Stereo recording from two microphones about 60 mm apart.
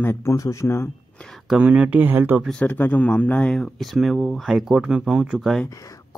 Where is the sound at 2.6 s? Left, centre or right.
Left.